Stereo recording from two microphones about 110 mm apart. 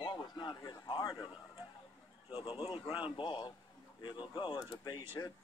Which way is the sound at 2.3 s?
50° left (ahead or behind).